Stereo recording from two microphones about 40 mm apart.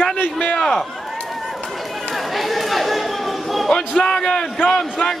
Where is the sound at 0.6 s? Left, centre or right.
Centre.